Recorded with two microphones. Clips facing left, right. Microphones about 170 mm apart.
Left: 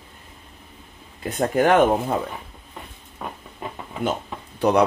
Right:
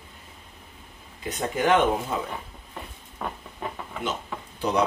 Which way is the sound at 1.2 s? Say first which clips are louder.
Left 5 dB; 55° left (ahead or behind).